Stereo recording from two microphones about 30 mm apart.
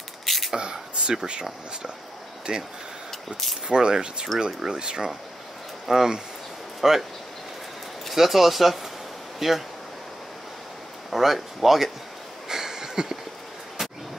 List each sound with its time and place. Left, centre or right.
0.2 s a sound: centre
0.6 s speech: right
3.1 s vehicle: centre
3.6 s speech: right
6.8 s speech: centre
8.1 s speech: centre
11.1 s speech: centre
12.4 s a sound: centre